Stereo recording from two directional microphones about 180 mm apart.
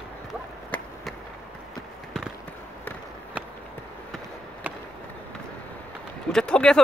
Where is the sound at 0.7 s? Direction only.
10° left (ahead or behind).